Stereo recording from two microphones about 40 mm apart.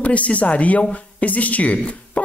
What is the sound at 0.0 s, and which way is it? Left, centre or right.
Speech, left.